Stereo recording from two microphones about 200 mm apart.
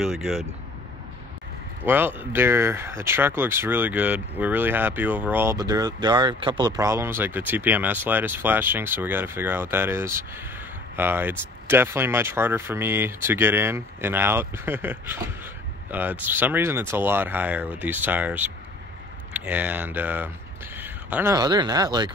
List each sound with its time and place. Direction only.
0.0 s speech: centre (ahead or behind)
1.9 s speech: 10° right (ahead or behind)